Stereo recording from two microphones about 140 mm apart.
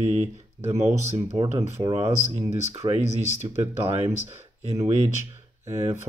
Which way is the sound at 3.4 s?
55° right (ahead or behind).